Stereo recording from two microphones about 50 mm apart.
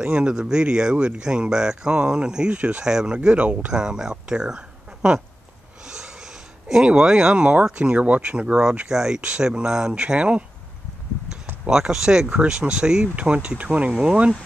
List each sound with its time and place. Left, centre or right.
0.0 s speech: centre
2.9 s speech: centre
3.2 s speech: right
4.3 s a sound: centre
6.9 s speech: centre
8.8 s speech: centre
11.7 s speech: centre
13.0 s speech: right